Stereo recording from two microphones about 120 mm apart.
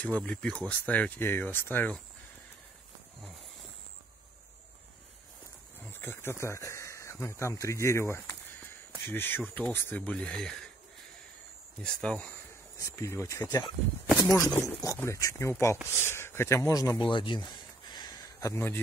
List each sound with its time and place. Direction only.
0.0 s speech: 10° left (ahead or behind)
5.9 s speech: 20° left (ahead or behind)
11.8 s speech: 5° left (ahead or behind)
12.7 s speech: 25° left (ahead or behind)
14.5 s speech: 15° left (ahead or behind)
15.0 s speech: 25° left (ahead or behind)
17.0 s a sound: 45° left (ahead or behind); by 18.6 s 30° left (ahead or behind)